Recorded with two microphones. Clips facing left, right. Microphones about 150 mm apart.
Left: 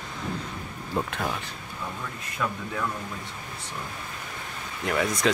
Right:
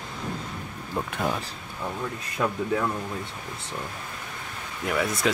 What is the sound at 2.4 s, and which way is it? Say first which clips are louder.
Speech: right 3 dB; 35° right (ahead or behind).